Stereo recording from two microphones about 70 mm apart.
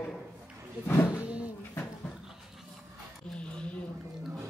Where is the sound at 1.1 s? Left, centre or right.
Centre.